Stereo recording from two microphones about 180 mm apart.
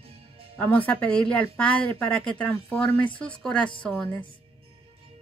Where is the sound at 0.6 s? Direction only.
10° left (ahead or behind).